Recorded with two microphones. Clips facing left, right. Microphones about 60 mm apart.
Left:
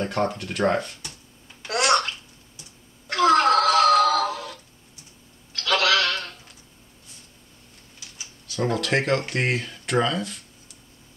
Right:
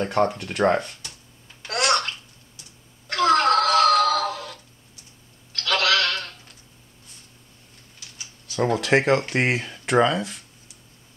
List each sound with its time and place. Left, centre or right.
0.0 s speech: centre
1.6 s a sound: centre
8.7 s speech: centre